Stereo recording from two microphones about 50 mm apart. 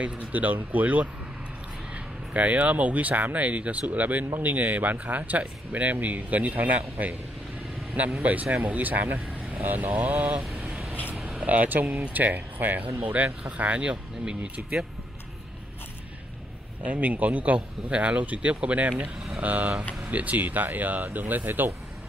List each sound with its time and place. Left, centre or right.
0.0 s speech: right
2.3 s speech: right
8.2 s speech: right
11.3 s speech: right
16.8 s speech: right